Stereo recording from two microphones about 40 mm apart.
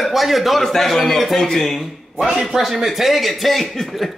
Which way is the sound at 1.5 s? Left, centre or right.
Centre.